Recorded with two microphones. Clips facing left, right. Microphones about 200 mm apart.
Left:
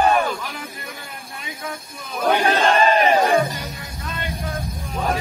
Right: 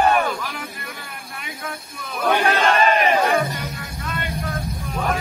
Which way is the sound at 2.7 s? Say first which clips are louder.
Left 2 dB; 30° left (ahead or behind).